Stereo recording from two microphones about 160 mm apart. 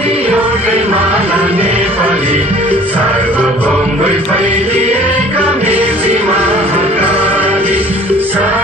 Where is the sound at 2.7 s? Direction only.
10° left (ahead or behind).